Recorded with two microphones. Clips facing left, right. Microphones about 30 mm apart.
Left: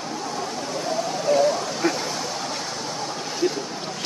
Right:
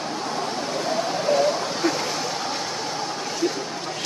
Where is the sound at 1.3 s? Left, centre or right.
Right.